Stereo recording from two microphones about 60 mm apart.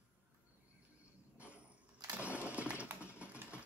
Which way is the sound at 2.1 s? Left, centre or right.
Right.